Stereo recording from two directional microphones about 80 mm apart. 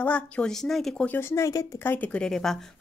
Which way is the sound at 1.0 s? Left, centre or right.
Left.